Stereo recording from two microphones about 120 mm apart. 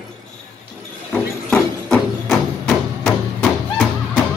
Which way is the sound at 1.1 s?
5° left (ahead or behind).